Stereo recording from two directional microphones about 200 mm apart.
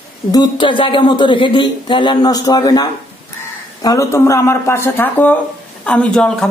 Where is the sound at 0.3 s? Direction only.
25° left (ahead or behind).